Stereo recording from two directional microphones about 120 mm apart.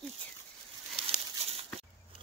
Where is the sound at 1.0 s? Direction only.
55° right (ahead or behind).